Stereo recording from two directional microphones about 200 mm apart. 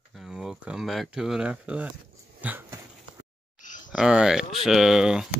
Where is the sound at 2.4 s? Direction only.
10° right (ahead or behind).